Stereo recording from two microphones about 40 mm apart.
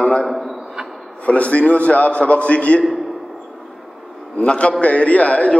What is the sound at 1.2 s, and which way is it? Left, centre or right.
A man's voice, left.